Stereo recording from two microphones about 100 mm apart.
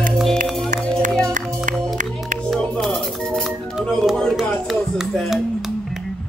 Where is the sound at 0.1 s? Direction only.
Centre (ahead or behind).